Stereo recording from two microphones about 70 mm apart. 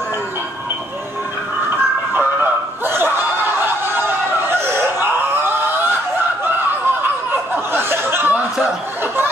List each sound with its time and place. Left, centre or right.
2.1 s snicker: right
7.5 s chuckle: right